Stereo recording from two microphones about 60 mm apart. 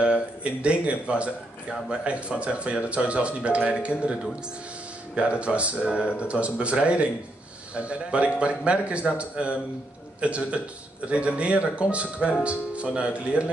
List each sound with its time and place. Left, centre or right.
0.0 s speech: centre
5.4 s speech: right